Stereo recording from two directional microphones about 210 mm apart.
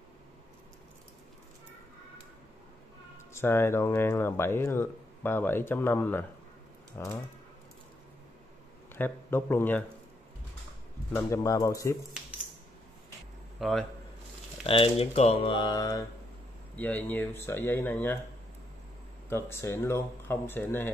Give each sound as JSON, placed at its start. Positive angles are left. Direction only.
{"t": 3.3, "sound": "speech", "side_deg": 10}
{"t": 8.9, "sound": "speech", "side_deg": 10}
{"t": 11.1, "sound": "speech", "side_deg": 10}
{"t": 13.6, "sound": "a man's voice", "side_deg": 0}
{"t": 14.6, "sound": "speech", "side_deg": 25}
{"t": 16.7, "sound": "speech", "side_deg": 10}
{"t": 19.2, "sound": "speech", "side_deg": 10}